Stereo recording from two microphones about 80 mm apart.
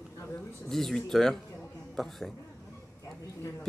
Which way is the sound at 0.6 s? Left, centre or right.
Centre.